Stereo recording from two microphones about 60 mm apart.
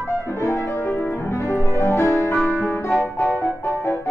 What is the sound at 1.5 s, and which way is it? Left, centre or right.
Music, left.